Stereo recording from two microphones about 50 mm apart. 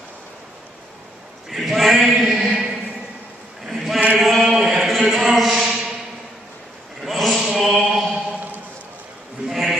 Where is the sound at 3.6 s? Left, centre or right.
Centre.